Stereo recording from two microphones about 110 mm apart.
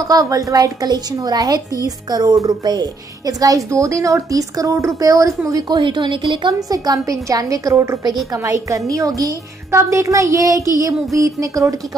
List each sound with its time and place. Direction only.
0.1 s a woman's voice: 30° right (ahead or behind)
5.5 s a woman's voice: 45° right (ahead or behind)
6.4 s a woman's voice: 35° right (ahead or behind)